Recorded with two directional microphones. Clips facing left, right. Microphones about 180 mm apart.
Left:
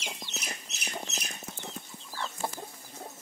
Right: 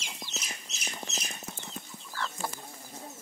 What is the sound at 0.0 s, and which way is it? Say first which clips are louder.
Chicken: left 2 dB; 60° left (ahead or behind).